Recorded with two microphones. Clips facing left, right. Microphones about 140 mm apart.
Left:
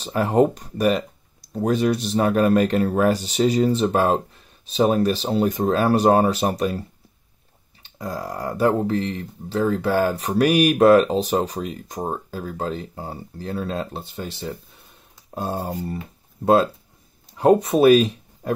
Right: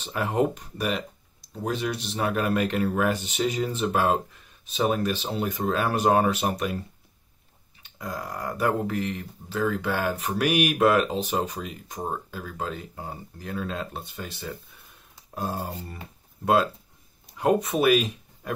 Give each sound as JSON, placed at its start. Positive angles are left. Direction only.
{"t": 0.0, "sound": "speech", "side_deg": 35}
{"t": 7.8, "sound": "speech", "side_deg": 30}
{"t": 17.4, "sound": "speech", "side_deg": 35}